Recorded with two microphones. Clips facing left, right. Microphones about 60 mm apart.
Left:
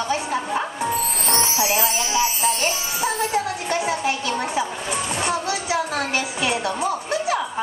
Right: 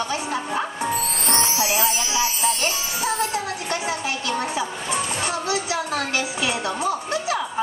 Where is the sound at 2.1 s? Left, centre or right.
Left.